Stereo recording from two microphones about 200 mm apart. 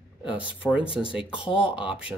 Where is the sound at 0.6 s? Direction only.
5° left (ahead or behind).